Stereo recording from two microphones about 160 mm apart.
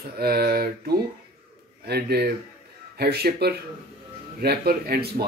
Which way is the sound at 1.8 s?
85° right.